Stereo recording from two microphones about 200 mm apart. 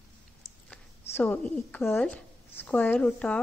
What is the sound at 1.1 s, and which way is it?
A woman's voice, 10° left (ahead or behind).